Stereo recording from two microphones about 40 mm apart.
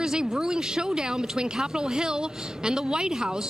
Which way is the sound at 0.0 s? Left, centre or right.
Centre.